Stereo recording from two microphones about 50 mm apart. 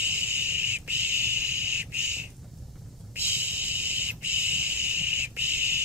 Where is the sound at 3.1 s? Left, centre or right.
Right.